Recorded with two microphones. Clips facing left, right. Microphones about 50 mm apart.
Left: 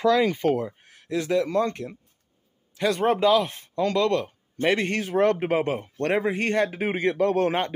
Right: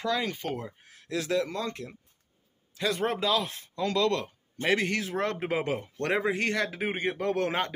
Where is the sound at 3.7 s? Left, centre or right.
Left.